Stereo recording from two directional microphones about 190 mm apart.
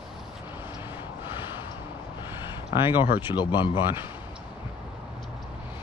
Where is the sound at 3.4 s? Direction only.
25° left (ahead or behind).